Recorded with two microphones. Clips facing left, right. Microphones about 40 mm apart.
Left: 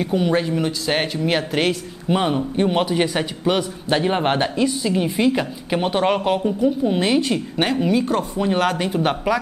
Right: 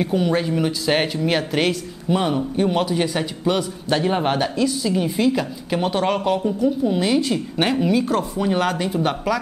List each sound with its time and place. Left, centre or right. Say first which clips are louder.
0.2 s speech: even; centre
2.0 s a man's voice: left 1 dB; centre
7.5 s a man's voice: even; centre